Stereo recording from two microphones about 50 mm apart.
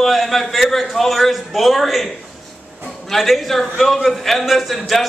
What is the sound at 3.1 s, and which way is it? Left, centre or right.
A man's voice, centre.